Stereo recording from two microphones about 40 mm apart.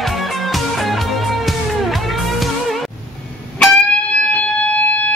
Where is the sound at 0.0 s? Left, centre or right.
Centre.